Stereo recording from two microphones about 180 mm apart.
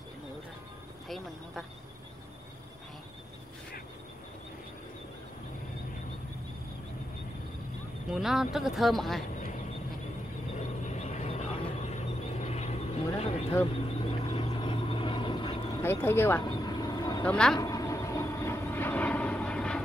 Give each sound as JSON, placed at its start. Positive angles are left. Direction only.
{"t": 1.0, "sound": "speech", "side_deg": 0}
{"t": 8.1, "sound": "speech", "side_deg": 0}
{"t": 10.9, "sound": "vehicle", "side_deg": 40}
{"t": 15.8, "sound": "vehicle", "side_deg": 10}
{"t": 17.2, "sound": "speech", "side_deg": 5}
{"t": 17.6, "sound": "vehicle", "side_deg": 20}